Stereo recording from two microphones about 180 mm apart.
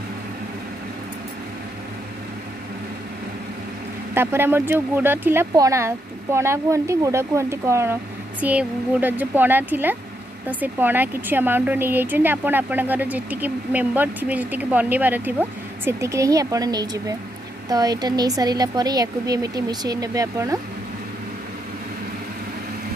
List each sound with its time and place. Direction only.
4.1 s a woman's voice: 10° right (ahead or behind)